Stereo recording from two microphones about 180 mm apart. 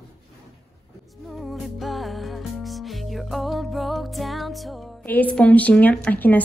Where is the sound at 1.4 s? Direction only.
Centre (ahead or behind).